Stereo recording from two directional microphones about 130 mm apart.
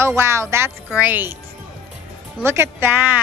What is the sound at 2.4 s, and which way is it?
Speech, 20° right (ahead or behind).